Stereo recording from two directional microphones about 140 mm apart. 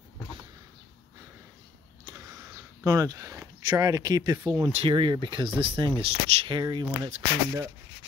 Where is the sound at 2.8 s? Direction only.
25° right (ahead or behind).